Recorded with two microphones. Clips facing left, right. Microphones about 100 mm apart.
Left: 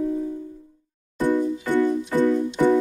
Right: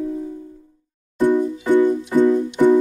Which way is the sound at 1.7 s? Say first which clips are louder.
Right 7 dB; 10° right (ahead or behind).